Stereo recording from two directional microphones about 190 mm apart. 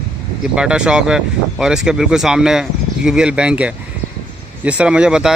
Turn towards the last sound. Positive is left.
turn(degrees=-5)  # may be behind; listen again after turning